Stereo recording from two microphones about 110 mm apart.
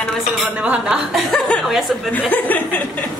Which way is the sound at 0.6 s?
10° right (ahead or behind).